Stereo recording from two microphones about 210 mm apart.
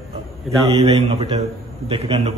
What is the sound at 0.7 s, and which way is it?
A man's voice, 30° right (ahead or behind).